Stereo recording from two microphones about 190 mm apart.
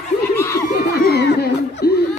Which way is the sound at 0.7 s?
50° left (ahead or behind).